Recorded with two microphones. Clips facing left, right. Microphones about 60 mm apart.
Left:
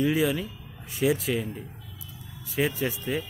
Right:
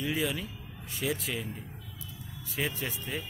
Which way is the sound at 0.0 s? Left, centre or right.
Centre.